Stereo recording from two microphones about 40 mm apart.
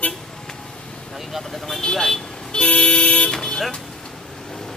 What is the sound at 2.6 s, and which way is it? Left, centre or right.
Vehicle, left.